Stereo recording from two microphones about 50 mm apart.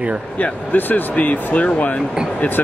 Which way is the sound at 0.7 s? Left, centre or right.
Left.